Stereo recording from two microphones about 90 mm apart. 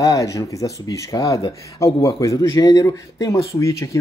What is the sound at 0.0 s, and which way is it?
Speech, 40° left (ahead or behind).